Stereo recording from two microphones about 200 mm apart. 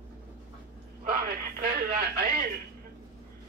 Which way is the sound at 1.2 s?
45° right (ahead or behind).